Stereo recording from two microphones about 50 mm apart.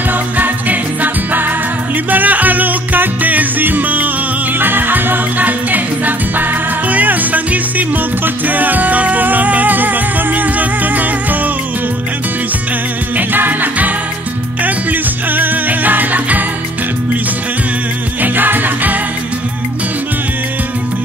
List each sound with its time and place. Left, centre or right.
0.4 s music: right
13.3 s music: right
18.2 s music: right